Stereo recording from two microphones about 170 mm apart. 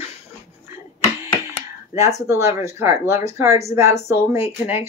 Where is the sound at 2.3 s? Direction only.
15° right (ahead or behind).